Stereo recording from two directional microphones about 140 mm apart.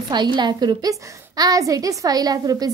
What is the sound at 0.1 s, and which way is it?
A woman's voice, 30° right (ahead or behind).